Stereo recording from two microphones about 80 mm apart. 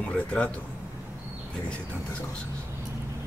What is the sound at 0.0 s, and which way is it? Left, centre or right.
Speech, centre.